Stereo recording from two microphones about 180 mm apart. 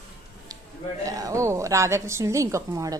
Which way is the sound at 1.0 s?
20° right (ahead or behind).